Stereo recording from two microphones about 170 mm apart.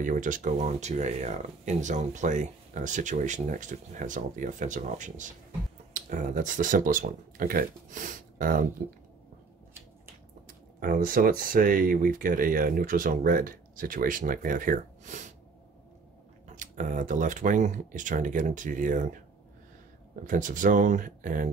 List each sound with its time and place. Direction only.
0.0 s speech: 50° right (ahead or behind)
10.8 s speech: 55° right (ahead or behind)
16.4 s speech: 50° right (ahead or behind)
20.2 s speech: 50° right (ahead or behind)